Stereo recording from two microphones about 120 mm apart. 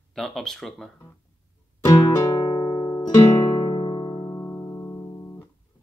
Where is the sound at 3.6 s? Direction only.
40° left (ahead or behind).